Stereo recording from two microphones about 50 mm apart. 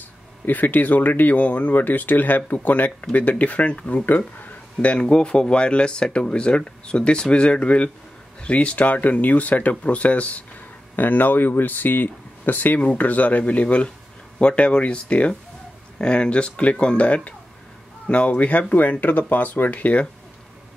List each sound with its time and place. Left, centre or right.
0.5 s speech: left